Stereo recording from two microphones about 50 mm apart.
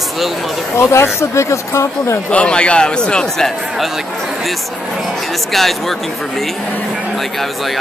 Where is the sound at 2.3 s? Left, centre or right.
Left.